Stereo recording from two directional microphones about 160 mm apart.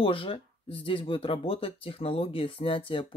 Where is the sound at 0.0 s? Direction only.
35° left (ahead or behind).